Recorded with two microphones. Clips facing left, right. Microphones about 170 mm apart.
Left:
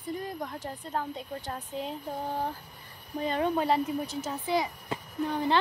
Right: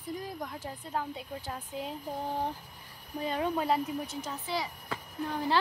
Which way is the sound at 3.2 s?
5° right (ahead or behind).